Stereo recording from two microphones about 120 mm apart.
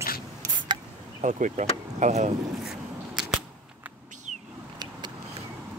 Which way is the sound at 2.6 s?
5° right (ahead or behind).